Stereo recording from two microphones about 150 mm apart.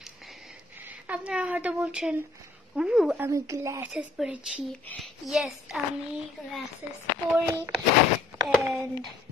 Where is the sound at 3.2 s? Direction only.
20° right (ahead or behind).